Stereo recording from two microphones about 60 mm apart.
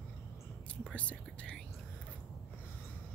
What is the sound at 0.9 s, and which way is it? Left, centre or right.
Whispering, centre.